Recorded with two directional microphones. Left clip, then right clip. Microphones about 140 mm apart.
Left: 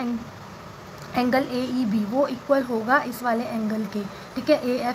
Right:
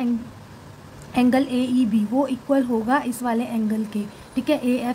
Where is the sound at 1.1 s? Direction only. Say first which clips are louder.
Right 2 dB; 20° right (ahead or behind).